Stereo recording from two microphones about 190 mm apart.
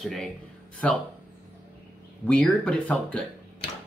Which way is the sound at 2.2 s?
5° left (ahead or behind).